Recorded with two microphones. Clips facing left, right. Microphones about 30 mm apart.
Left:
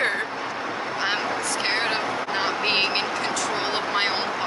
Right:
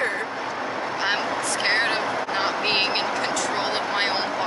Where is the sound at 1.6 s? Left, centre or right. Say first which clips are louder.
Right 3 dB; centre.